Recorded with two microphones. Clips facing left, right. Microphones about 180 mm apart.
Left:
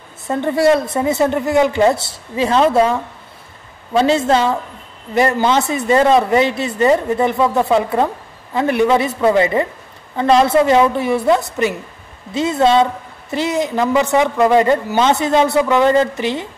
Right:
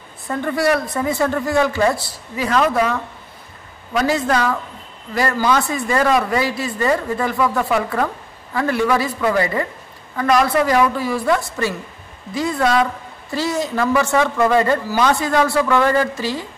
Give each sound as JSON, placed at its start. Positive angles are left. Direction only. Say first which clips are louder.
{"t": 0.3, "sound": "a woman's voice", "louder": "left 5 dB", "side_deg": 25}